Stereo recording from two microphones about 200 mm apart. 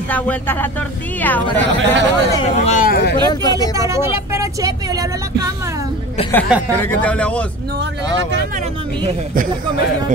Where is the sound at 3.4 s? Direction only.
20° left (ahead or behind).